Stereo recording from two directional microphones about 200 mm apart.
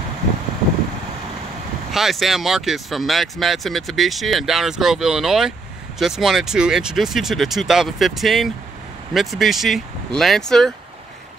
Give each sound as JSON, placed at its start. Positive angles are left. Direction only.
{"t": 1.9, "sound": "speech", "side_deg": 0}